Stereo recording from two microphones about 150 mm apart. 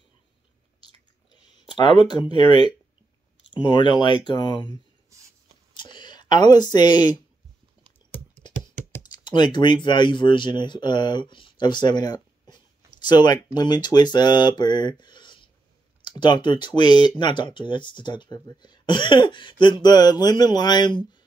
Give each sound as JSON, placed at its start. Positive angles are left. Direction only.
{"t": 1.8, "sound": "speech", "side_deg": 30}
{"t": 5.8, "sound": "speech", "side_deg": 30}
{"t": 9.1, "sound": "speech", "side_deg": 30}